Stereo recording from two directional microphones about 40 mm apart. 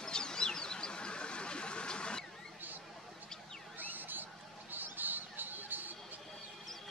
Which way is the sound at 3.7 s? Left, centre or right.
Right.